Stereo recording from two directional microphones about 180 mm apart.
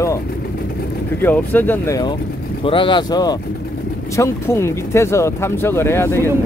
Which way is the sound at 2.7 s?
30° left (ahead or behind).